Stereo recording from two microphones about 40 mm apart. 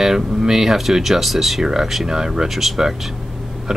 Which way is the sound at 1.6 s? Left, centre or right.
Centre.